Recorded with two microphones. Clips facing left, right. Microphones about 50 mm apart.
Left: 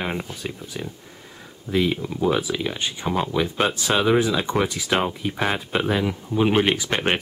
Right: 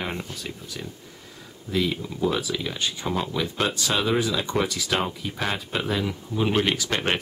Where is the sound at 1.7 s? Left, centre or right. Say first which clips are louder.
Left 4 dB; left.